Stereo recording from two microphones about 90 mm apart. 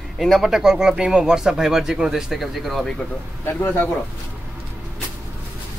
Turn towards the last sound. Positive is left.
turn(degrees=25)  # may be behind; listen again after turning